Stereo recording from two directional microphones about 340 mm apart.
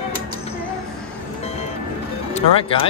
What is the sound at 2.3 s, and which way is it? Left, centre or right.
Speech, centre.